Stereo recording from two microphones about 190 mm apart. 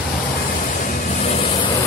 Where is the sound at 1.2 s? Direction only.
30° left (ahead or behind).